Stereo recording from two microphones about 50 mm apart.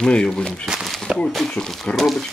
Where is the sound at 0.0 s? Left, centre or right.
Centre.